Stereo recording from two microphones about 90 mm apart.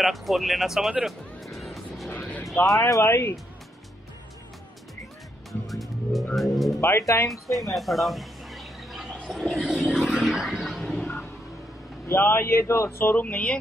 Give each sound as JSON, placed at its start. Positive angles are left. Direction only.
{"t": 0.0, "sound": "speech", "side_deg": 0}
{"t": 1.0, "sound": "music", "side_deg": 0}
{"t": 2.0, "sound": "vehicle", "side_deg": 15}
{"t": 2.9, "sound": "speech", "side_deg": 30}
{"t": 5.5, "sound": "music", "side_deg": 0}
{"t": 6.3, "sound": "speech", "side_deg": 0}
{"t": 6.8, "sound": "speech", "side_deg": 30}
{"t": 7.5, "sound": "a sound", "side_deg": 0}
{"t": 9.8, "sound": "music", "side_deg": -10}
{"t": 12.1, "sound": "speech", "side_deg": 25}